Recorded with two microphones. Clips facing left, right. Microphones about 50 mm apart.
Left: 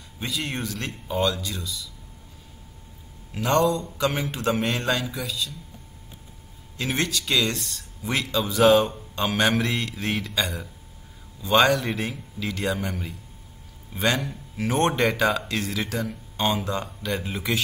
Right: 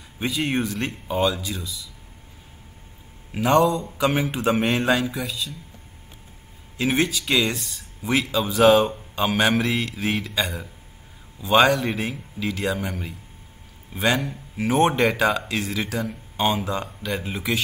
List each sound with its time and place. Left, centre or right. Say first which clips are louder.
0.2 s speech: right 6 dB; centre
3.3 s speech: right 3 dB; centre
6.8 s speech: right 4 dB; centre